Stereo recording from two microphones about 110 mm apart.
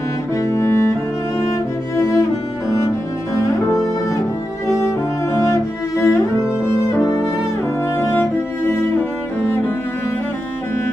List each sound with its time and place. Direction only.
0.4 s music: 30° left (ahead or behind)
2.0 s cello: 30° left (ahead or behind)
3.7 s music: 30° left (ahead or behind)
8.0 s cello: 20° left (ahead or behind)